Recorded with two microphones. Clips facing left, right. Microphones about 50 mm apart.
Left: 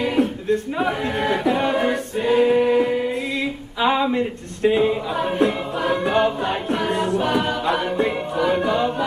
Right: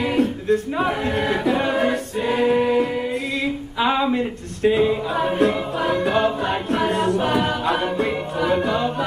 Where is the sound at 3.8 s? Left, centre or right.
Centre.